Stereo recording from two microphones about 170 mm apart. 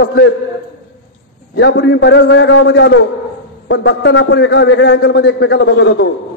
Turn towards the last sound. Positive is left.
turn(degrees=90)